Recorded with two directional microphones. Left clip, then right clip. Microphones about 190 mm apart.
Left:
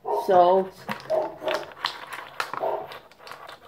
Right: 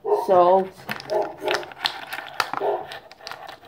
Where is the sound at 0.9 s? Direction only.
55° right (ahead or behind).